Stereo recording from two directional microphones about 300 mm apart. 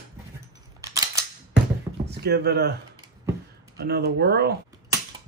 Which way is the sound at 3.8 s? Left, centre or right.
Right.